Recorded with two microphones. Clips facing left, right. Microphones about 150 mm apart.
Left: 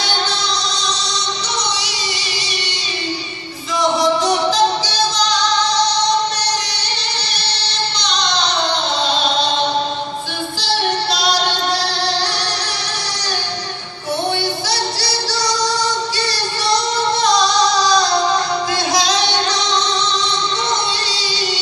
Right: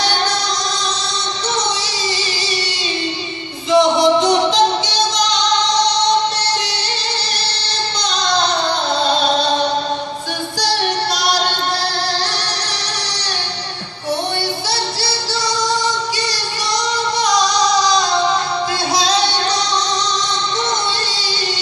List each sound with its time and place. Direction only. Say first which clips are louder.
3.7 s music: right 4 dB; 20° right (ahead or behind)